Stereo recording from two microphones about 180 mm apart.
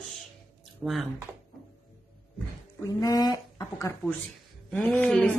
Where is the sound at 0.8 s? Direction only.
5° right (ahead or behind).